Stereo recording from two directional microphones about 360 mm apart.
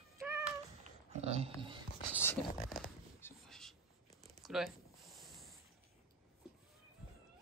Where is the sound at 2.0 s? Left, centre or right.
Centre.